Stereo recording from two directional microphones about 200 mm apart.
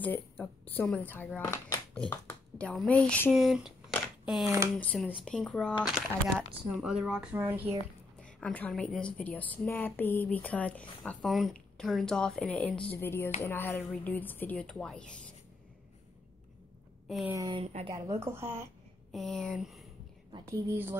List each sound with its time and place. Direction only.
0.0 s speech: 10° left (ahead or behind)
4.7 s speech: 5° left (ahead or behind); by 7.7 s 10° right (ahead or behind)
8.2 s speech: 5° left (ahead or behind)
17.1 s speech: centre (ahead or behind)
17.4 s speech: 25° right (ahead or behind)
19.1 s speech: 5° left (ahead or behind)
20.3 s speech: 15° right (ahead or behind)